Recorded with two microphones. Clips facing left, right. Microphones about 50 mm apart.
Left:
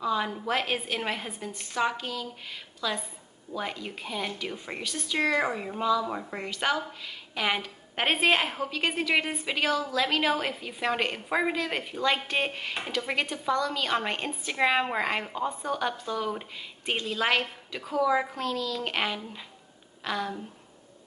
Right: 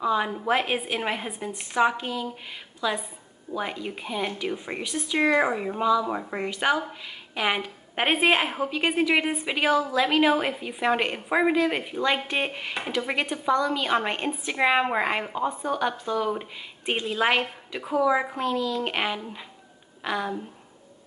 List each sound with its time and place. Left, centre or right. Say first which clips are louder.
0.0 s speech: right 4 dB; centre